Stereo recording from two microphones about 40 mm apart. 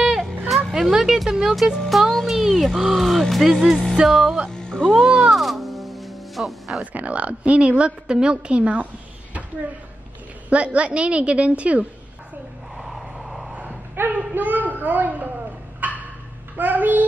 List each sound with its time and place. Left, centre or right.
0.0 s vehicle: centre
0.9 s speech: centre
4.5 s music: centre
5.0 s speech: centre
5.3 s music: centre
6.8 s a woman's voice: right
10.5 s a woman's voice: right
12.7 s vehicle: centre
14.1 s a sound: right
16.5 s a child's voice: right